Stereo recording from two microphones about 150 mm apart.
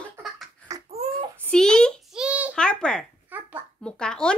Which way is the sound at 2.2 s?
10° right (ahead or behind).